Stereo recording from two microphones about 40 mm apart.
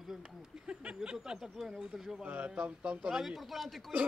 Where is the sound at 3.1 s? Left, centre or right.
Centre.